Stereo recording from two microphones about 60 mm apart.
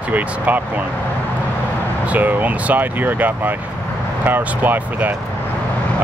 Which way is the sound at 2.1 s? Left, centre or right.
Right.